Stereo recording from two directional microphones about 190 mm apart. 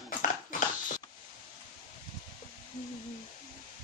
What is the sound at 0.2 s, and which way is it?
Dog, 40° left (ahead or behind).